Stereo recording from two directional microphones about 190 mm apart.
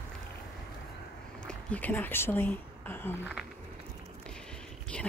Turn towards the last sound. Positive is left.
turn(degrees=5)  # may be behind; listen again after turning